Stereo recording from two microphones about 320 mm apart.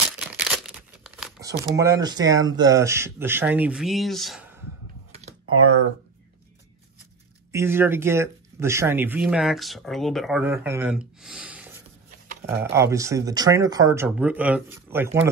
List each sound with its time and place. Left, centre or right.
0.4 s crumpling: centre
1.8 s speech: centre
5.5 s speech: right
7.5 s speech: centre